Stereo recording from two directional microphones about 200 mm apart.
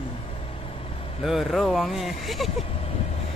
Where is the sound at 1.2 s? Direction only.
Centre (ahead or behind).